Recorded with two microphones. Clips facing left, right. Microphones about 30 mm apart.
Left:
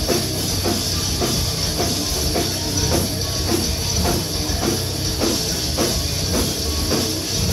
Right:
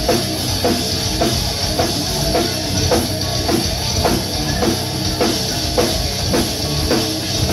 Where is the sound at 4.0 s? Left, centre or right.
Right.